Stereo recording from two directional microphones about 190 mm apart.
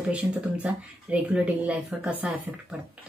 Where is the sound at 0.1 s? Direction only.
10° right (ahead or behind).